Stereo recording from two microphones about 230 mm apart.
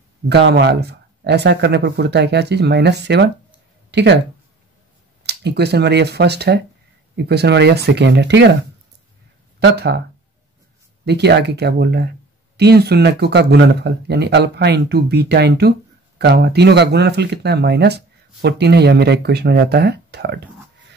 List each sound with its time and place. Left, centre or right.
0.3 s speech: right
5.2 s speech: right
9.6 s speech: right
11.1 s speech: right